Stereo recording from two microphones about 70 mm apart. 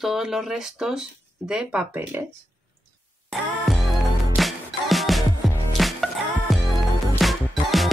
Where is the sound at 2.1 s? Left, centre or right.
Right.